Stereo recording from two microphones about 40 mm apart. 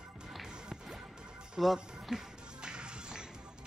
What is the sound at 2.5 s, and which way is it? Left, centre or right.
Music, right.